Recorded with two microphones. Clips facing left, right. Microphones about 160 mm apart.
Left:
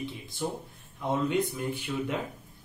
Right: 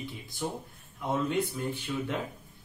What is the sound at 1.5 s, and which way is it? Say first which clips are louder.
Speech: left 1 dB; 10° left (ahead or behind).